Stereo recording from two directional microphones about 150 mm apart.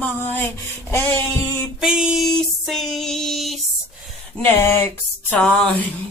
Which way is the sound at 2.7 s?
Centre (ahead or behind).